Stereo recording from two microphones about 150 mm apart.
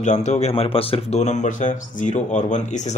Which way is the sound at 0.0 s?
50° left (ahead or behind).